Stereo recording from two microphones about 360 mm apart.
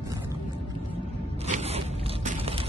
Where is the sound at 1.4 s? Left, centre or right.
Centre.